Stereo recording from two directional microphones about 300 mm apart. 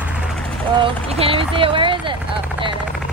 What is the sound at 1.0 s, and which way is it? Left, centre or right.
Vehicle, centre.